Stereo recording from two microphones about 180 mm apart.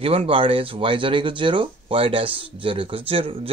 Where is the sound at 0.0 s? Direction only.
30° right (ahead or behind).